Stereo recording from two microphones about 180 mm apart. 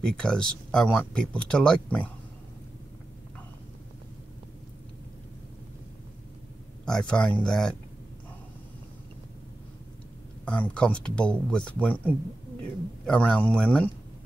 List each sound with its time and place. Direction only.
0.0 s speech: 5° left (ahead or behind)
6.9 s speech: 5° left (ahead or behind)
10.4 s speech: 5° left (ahead or behind)
13.0 s speech: 5° left (ahead or behind)